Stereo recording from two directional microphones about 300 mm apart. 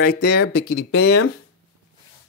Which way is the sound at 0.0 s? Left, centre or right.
Left.